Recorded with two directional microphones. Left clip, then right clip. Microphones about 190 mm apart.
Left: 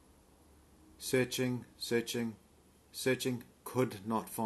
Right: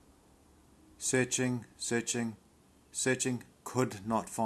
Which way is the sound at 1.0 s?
25° right (ahead or behind).